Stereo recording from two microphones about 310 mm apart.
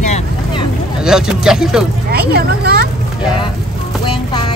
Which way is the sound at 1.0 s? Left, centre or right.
Centre.